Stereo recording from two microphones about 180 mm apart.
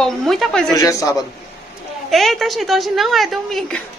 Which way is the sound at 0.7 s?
20° left (ahead or behind).